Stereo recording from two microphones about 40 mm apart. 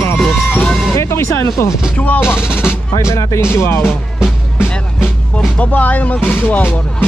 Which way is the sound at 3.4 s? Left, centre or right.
Left.